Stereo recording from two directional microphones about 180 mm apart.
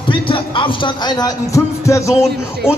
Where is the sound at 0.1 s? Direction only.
30° left (ahead or behind).